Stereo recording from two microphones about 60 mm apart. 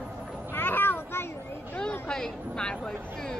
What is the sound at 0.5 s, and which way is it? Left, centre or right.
Vehicle, left.